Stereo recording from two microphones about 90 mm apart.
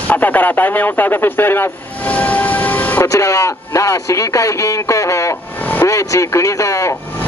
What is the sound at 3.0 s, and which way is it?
Speech, 35° left (ahead or behind).